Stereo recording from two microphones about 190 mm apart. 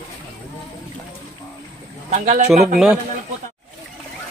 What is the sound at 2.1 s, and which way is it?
Speech, 40° right (ahead or behind).